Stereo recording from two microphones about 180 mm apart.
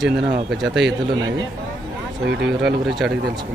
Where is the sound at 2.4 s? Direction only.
70° right (ahead or behind).